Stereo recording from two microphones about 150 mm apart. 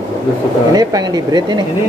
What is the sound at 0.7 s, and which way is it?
Speech, 25° right (ahead or behind).